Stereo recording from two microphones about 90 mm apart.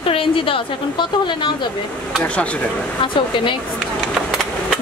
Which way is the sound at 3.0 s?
65° left (ahead or behind).